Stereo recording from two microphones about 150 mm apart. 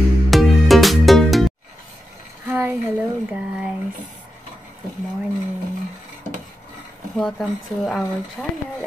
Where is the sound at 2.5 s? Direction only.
10° right (ahead or behind).